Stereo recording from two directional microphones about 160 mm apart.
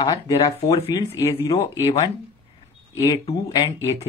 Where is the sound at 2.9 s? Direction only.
25° left (ahead or behind).